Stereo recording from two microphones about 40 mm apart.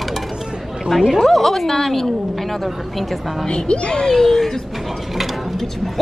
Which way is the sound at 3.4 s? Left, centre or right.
Left.